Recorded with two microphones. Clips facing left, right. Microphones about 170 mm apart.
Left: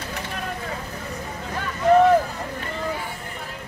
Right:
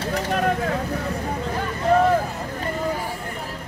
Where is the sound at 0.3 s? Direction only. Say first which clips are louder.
Right 12 dB; 70° right (ahead or behind).